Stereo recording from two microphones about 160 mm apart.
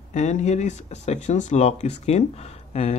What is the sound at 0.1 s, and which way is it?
Speech, 45° left (ahead or behind).